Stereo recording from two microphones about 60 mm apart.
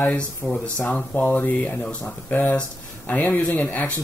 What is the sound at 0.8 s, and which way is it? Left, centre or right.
Speech, left.